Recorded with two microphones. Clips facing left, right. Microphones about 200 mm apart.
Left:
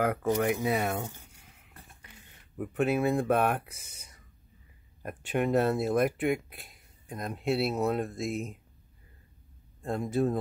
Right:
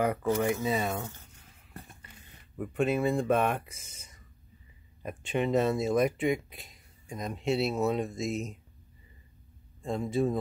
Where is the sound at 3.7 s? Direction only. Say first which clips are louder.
Even; 70° left (ahead or behind).